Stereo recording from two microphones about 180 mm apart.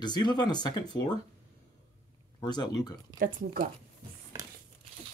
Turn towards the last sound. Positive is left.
turn(degrees=-50)  # may be behind; listen again after turning